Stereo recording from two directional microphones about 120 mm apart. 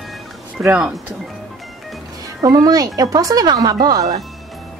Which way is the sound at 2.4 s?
30° right (ahead or behind).